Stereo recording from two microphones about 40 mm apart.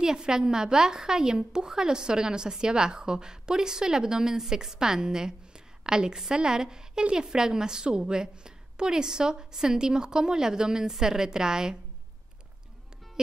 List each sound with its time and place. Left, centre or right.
0.0 s a woman's voice: centre